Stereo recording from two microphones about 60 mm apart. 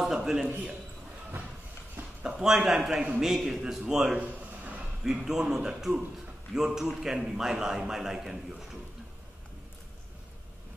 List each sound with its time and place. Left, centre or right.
0.0 s a sound: centre
0.5 s a man's voice: right
2.2 s a man's voice: centre
2.5 s a man's voice: centre
4.2 s a sound: right
5.0 s a man's voice: centre